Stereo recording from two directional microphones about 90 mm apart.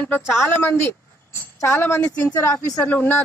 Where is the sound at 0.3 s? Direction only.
25° left (ahead or behind).